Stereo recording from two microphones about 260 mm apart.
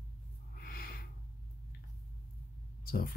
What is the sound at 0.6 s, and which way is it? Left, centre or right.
Snort, left.